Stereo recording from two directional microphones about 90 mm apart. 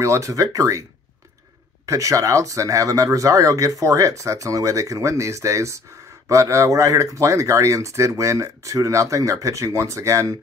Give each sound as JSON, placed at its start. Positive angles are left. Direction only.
{"t": 0.0, "sound": "speech", "side_deg": -35}
{"t": 1.9, "sound": "speech", "side_deg": -40}